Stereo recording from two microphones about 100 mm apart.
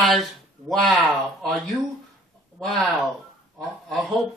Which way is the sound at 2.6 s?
5° left (ahead or behind).